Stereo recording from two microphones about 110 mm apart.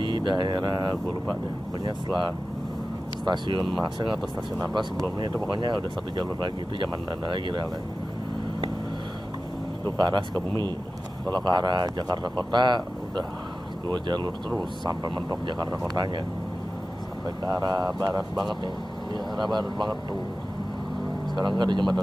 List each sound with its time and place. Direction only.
0.0 s speech: 45° right (ahead or behind)
4.1 s speech: centre (ahead or behind)
5.5 s speech: 40° right (ahead or behind)
9.8 s speech: 40° right (ahead or behind)
11.2 s speech: 40° right (ahead or behind)
17.4 s speech: 40° right (ahead or behind)
18.1 s speech: centre (ahead or behind)
21.4 s speech: 40° right (ahead or behind)